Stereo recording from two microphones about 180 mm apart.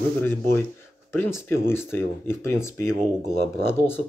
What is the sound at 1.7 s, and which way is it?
Speech, 15° left (ahead or behind).